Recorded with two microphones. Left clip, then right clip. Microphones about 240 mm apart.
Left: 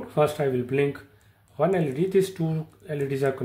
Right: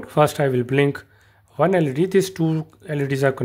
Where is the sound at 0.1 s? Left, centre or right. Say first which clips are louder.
Right 5 dB; right.